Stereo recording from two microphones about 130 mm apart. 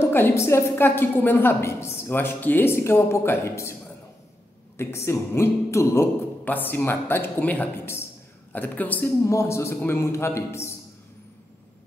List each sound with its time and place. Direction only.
0.0 s a woman's voice: 20° left (ahead or behind)
4.7 s a man's voice: 20° left (ahead or behind)